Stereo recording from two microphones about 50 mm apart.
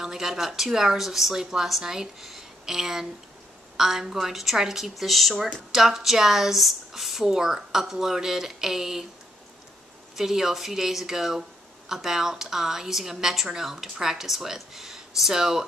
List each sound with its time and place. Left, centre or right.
0.0 s a woman's voice: centre
10.1 s a woman's voice: centre